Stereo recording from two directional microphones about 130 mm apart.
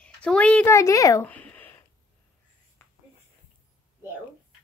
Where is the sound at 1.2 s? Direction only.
10° left (ahead or behind).